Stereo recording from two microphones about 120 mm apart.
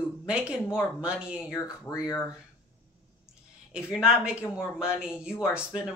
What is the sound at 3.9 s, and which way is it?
Speech, 5° right (ahead or behind).